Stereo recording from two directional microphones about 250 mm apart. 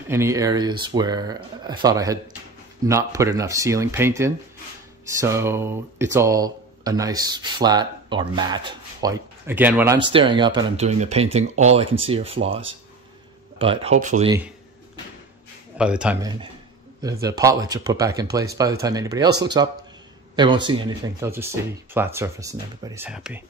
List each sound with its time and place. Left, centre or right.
0.1 s speech: centre
10.0 s speech: centre
15.8 s speech: centre